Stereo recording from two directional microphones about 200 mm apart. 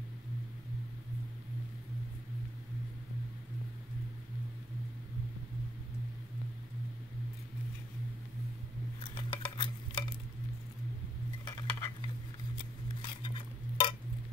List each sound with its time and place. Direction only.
9.1 s stir: 25° left (ahead or behind)
11.4 s stir: 20° left (ahead or behind)
13.0 s cutlery: 25° left (ahead or behind)